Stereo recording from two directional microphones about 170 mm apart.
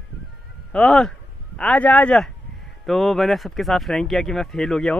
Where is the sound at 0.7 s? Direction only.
5° left (ahead or behind).